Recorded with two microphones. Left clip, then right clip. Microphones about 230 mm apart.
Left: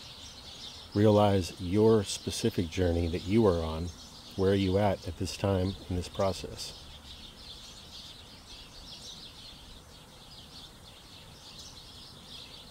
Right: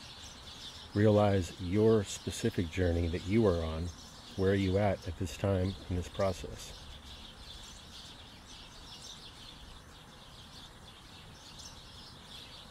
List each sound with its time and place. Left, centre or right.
0.9 s speech: centre